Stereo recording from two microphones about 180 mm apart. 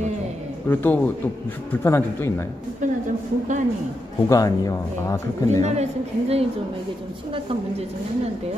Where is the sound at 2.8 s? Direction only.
45° right (ahead or behind).